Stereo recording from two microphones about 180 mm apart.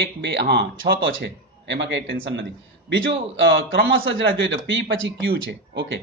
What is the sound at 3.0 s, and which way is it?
Speech, 90° right.